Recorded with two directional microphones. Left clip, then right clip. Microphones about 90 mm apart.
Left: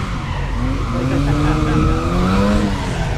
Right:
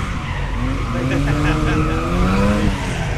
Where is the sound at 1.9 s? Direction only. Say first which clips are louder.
Left 1 dB; 5° right (ahead or behind).